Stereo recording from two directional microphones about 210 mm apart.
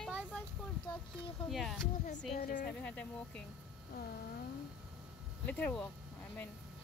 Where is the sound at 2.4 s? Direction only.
45° left (ahead or behind).